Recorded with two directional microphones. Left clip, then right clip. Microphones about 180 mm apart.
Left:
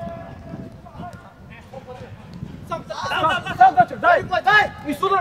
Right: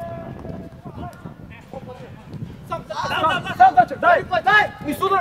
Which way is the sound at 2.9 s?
20° right (ahead or behind).